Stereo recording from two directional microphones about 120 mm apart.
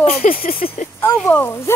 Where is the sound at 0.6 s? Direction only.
75° left (ahead or behind).